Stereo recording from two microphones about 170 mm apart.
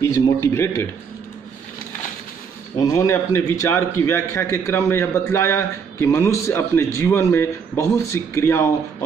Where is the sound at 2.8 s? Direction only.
20° left (ahead or behind).